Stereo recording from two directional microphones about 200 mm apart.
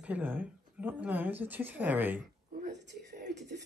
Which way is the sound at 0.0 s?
10° right (ahead or behind).